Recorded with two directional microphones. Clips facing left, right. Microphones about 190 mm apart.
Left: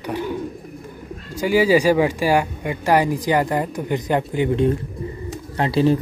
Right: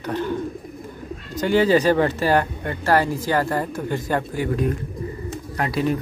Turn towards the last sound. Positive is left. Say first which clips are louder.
# left 5 dB
turn(degrees=30)  # may be behind; listen again after turning